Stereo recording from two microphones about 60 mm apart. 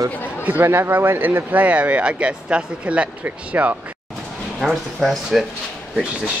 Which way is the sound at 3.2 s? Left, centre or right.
Right.